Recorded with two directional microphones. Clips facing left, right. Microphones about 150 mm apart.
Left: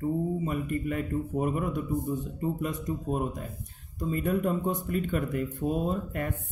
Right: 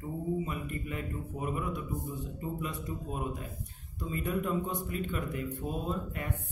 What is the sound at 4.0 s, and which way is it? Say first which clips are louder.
A man's voice: left 6 dB; 45° left (ahead or behind).